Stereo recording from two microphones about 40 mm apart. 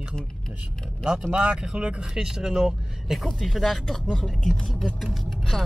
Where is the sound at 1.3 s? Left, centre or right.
Centre.